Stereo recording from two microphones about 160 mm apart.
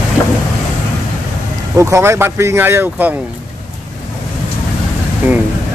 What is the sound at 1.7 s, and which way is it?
Speech, 20° right (ahead or behind).